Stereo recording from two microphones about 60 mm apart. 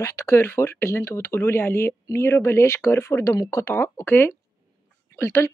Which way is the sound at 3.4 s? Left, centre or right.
Left.